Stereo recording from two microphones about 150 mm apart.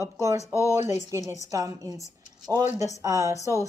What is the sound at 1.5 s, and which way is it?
Speech, 25° right (ahead or behind).